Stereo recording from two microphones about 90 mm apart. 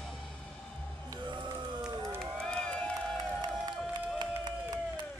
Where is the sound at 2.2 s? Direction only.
10° left (ahead or behind).